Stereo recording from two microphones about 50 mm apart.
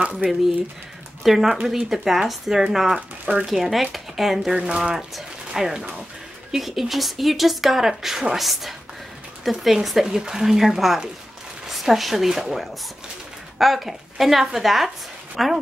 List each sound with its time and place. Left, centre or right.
1.2 s speech: centre
4.6 s speech: centre
10.0 s speech: centre